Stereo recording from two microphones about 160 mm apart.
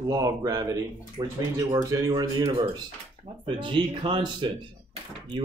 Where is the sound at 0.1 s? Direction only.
20° right (ahead or behind).